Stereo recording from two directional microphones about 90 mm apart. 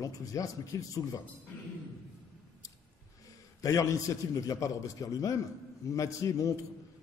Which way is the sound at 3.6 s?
40° left (ahead or behind).